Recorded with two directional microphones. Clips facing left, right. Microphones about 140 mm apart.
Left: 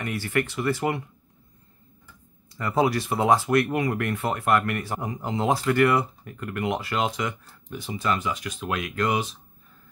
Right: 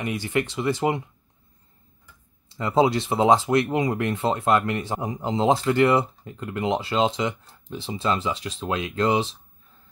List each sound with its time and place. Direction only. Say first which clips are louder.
0.0 s speech: right 1 dB; 20° right (ahead or behind)
2.5 s speech: right 3 dB; 25° right (ahead or behind)